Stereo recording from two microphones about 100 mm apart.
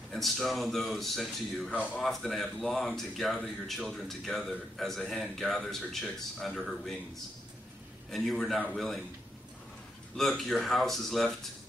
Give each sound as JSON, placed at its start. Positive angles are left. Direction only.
{"t": 0.1, "sound": "speech", "side_deg": 0}
{"t": 8.1, "sound": "speech", "side_deg": 0}
{"t": 10.1, "sound": "speech", "side_deg": 0}